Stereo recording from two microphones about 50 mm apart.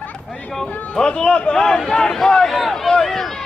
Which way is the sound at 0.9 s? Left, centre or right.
Centre.